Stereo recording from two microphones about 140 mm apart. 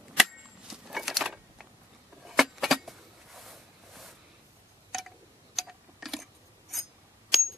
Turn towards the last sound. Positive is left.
turn(degrees=0)  # may be behind; listen again after turning